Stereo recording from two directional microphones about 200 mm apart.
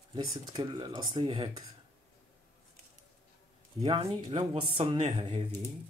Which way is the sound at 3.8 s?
30° right (ahead or behind).